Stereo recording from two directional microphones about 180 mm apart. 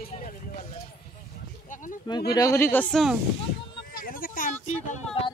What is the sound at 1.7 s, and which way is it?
Speech, 45° left (ahead or behind).